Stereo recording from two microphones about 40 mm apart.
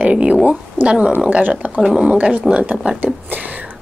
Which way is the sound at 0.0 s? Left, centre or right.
Right.